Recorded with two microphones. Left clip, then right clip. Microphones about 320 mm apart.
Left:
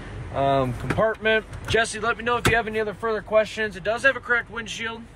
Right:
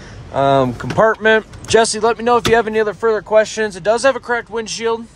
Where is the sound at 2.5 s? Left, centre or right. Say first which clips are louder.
Right 9 dB; right.